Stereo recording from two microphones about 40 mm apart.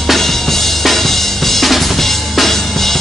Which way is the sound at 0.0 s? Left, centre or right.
Centre.